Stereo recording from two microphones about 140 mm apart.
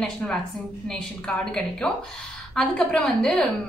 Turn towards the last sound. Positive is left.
turn(degrees=5)  # may be behind; listen again after turning